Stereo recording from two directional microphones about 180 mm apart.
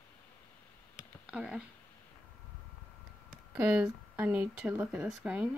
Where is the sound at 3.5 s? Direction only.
5° right (ahead or behind).